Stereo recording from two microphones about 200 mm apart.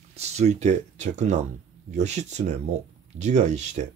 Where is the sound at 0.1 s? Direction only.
35° right (ahead or behind).